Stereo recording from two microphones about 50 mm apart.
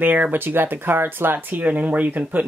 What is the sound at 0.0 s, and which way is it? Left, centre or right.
Speech, right.